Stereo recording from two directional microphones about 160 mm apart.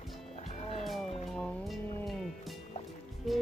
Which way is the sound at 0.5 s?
40° left (ahead or behind).